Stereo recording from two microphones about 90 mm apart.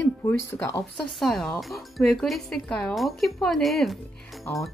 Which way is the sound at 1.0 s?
5° left (ahead or behind).